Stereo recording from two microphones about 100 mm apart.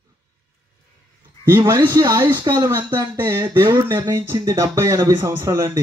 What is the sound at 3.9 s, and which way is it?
Speech, 35° right (ahead or behind).